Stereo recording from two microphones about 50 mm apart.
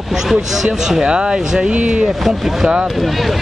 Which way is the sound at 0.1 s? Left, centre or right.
Centre.